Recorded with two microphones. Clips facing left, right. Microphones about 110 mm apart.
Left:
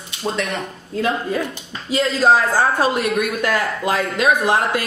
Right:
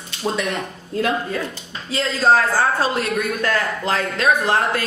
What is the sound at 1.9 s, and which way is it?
Speech, 15° left (ahead or behind).